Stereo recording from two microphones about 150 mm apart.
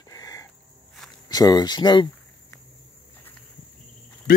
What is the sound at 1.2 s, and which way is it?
Speech, 25° left (ahead or behind).